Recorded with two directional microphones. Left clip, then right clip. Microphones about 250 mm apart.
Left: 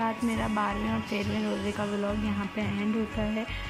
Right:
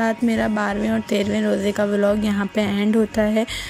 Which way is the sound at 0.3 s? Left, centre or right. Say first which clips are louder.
Right 8 dB; right.